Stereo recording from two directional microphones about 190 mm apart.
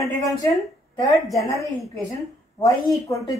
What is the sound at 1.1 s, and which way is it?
Speech, centre (ahead or behind).